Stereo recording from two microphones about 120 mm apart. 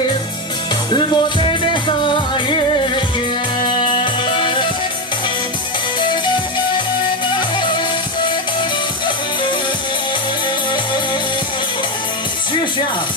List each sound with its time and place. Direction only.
0.9 s music: 45° left (ahead or behind)
7.3 s music: 40° left (ahead or behind)